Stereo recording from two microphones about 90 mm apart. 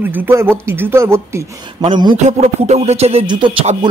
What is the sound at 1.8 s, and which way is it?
Speech, 50° right (ahead or behind).